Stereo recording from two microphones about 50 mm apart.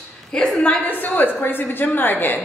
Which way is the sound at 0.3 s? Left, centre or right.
Centre.